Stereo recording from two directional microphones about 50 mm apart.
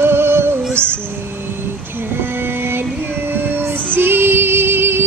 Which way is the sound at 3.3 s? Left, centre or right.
Right.